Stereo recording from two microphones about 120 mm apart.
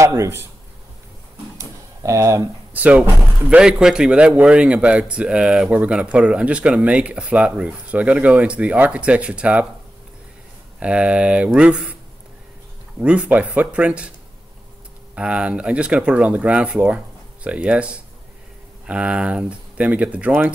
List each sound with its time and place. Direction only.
0.0 s a man's voice: 25° right (ahead or behind)
1.6 s a sound: 25° right (ahead or behind)
2.7 s speech: 10° right (ahead or behind)
10.8 s speech: 10° right (ahead or behind)
13.0 s speech: 10° right (ahead or behind)
15.1 s speech: 10° right (ahead or behind)